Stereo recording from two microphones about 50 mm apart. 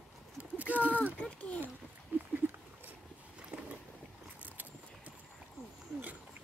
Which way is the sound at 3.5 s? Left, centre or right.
Right.